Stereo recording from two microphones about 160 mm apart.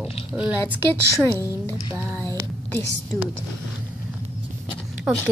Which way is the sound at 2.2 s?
15° left (ahead or behind).